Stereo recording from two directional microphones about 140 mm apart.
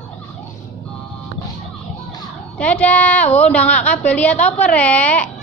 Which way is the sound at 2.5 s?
10° left (ahead or behind).